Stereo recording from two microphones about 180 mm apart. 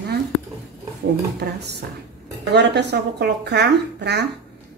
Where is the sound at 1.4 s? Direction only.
65° right (ahead or behind).